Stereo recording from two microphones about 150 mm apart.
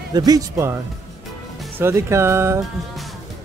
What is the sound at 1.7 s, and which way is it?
Speech, 15° right (ahead or behind).